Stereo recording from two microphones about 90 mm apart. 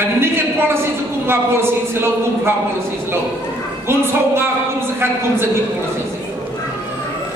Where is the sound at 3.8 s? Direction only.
25° right (ahead or behind).